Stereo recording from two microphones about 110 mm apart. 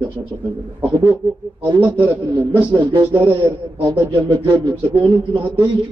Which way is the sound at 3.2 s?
15° right (ahead or behind).